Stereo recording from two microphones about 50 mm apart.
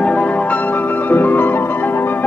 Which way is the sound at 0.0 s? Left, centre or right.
Left.